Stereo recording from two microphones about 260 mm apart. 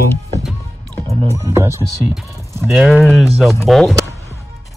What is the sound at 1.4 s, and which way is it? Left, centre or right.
Speech, centre.